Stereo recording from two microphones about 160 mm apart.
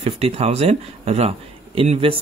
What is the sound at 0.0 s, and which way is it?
Speech, 40° right (ahead or behind).